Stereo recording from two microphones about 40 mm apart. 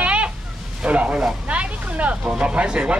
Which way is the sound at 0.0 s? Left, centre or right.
Right.